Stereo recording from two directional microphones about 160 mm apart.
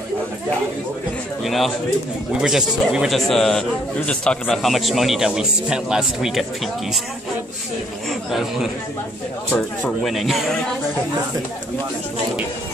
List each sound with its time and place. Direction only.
1.4 s a man's voice: centre (ahead or behind)
8.1 s a man's voice: centre (ahead or behind)
10.0 s a man's voice: centre (ahead or behind)